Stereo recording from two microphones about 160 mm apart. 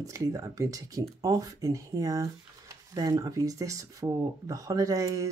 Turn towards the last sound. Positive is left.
turn(degrees=-20)  # may be behind; listen again after turning